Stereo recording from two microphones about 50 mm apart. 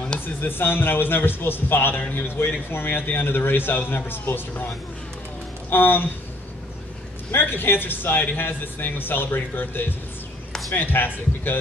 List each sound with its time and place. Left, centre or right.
0.4 s a man's voice: left
5.7 s a man's voice: left
7.2 s a man's voice: left